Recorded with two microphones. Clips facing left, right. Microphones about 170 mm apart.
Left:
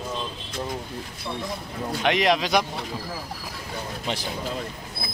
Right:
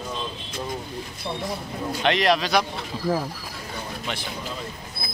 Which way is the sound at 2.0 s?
15° left (ahead or behind).